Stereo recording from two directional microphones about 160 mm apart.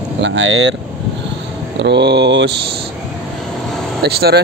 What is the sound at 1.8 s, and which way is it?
Speech, 90° right.